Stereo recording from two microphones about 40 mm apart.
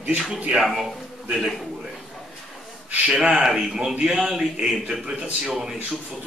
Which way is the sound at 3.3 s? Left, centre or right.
Centre.